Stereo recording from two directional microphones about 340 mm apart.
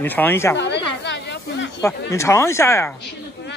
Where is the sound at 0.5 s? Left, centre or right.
Left.